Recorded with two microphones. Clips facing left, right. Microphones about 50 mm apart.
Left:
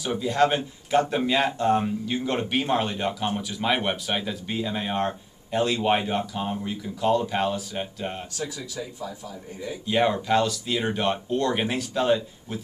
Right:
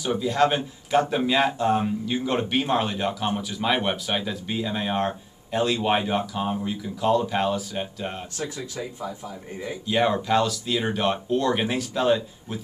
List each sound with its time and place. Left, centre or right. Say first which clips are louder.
0.0 s speech: right 1 dB; centre
8.4 s speech: right 1 dB; right
9.8 s speech: even; centre